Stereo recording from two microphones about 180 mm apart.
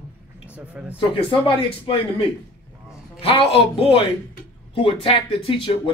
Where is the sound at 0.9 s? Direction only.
30° left (ahead or behind).